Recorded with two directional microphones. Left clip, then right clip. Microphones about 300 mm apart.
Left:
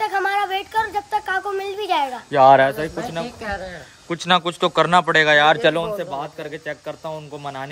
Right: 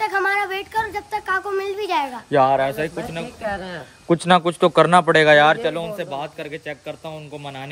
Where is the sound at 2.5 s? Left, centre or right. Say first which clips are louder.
Left 5 dB; left.